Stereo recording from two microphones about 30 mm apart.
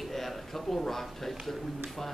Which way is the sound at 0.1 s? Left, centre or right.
Centre.